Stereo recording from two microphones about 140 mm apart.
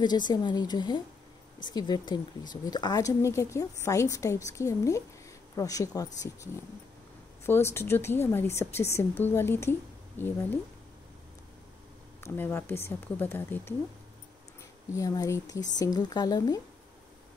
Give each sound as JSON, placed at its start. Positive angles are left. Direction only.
{"t": 0.0, "sound": "a woman's voice", "side_deg": 30}
{"t": 12.2, "sound": "a woman's voice", "side_deg": 15}
{"t": 15.0, "sound": "a woman's voice", "side_deg": 25}